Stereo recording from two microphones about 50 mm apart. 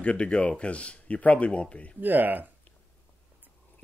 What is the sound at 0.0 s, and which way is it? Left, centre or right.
Speech, left.